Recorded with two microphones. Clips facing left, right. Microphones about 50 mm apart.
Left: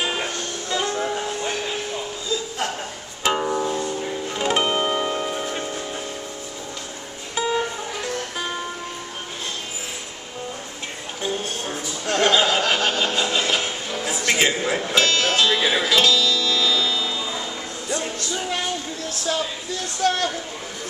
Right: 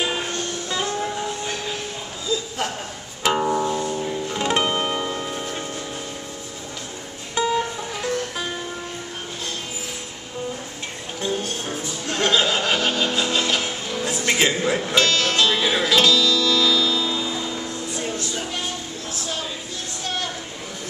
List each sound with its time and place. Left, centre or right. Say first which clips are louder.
3.3 s music: right 1 dB; centre
7.3 s music: right 1 dB; centre
11.1 s music: right 1 dB; centre
20.0 s a sound: left 9 dB; left